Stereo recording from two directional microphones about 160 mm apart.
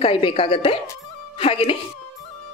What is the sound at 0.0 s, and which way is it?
A woman's voice, 35° left (ahead or behind).